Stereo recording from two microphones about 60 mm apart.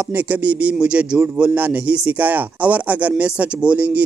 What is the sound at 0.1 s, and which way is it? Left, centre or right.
Speech, right.